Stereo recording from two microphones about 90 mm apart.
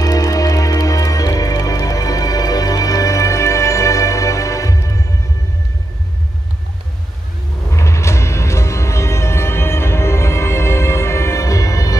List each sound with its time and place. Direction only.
0.0 s music: 40° left (ahead or behind)
7.7 s music: 35° left (ahead or behind)